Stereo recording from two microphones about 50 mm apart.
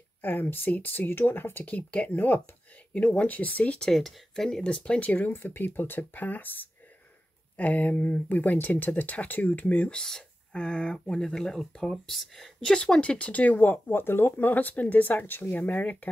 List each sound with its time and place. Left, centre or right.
0.2 s speech: left
1.7 s speech: left
2.9 s speech: left
3.9 s speech: centre
4.6 s speech: left
5.0 s speech: left
9.9 s speech: centre
12.7 s speech: centre